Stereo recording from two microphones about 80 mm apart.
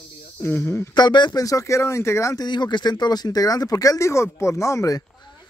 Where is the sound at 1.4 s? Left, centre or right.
Left.